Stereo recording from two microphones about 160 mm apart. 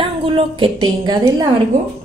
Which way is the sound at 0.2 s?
35° right (ahead or behind).